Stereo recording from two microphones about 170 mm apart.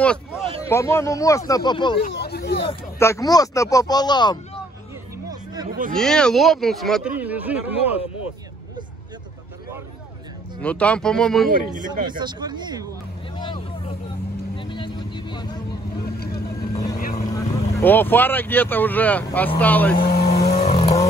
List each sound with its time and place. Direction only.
0.6 s speech: 15° left (ahead or behind)
2.1 s hubbub: 75° left (ahead or behind)
3.0 s speech: 20° left (ahead or behind)
5.3 s a sound: 25° right (ahead or behind)
5.7 s speech: 55° right (ahead or behind)
5.9 s speech: 5° left (ahead or behind)
10.6 s speech: 10° left (ahead or behind)
12.0 s speech: 25° right (ahead or behind)
13.4 s vehicle: 30° left (ahead or behind)
16.2 s vehicle: 65° left (ahead or behind)
16.7 s vehicle: 20° left (ahead or behind)
17.3 s speech: 15° left (ahead or behind)
20.0 s vehicle: 65° left (ahead or behind)
20.7 s vehicle: 25° left (ahead or behind)